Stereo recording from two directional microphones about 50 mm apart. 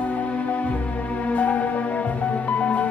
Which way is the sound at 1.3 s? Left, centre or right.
Left.